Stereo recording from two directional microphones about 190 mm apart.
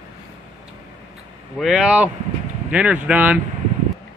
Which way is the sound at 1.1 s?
5° right (ahead or behind).